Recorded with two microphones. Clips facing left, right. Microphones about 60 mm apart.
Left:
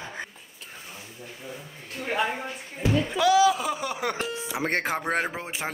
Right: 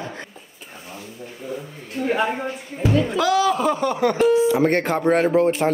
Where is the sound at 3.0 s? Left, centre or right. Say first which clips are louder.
Left 2 dB; centre.